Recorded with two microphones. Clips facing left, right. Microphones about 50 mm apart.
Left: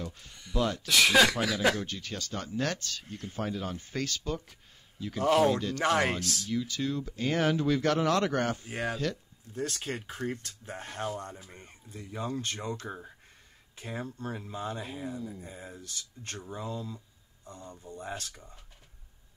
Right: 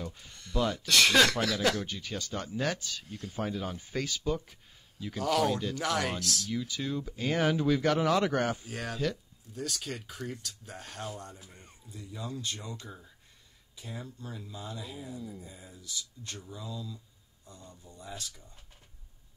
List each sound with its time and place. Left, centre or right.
0.3 s speech: centre
1.8 s speech: centre
5.2 s speech: left
5.5 s speech: centre
5.8 s speech: left
6.5 s speech: centre
8.6 s speech: left
8.9 s speech: centre
9.5 s speech: left
13.7 s speech: left
15.0 s speech: centre
15.4 s speech: left